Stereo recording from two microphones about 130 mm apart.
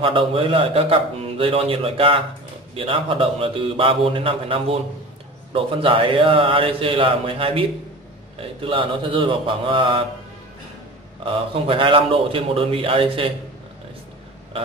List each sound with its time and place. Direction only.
0.0 s a man's voice: 45° right (ahead or behind)
11.2 s a man's voice: 45° right (ahead or behind)